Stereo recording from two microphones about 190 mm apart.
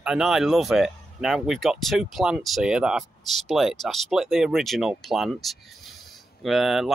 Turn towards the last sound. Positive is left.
turn(degrees=0)  # may be behind; listen again after turning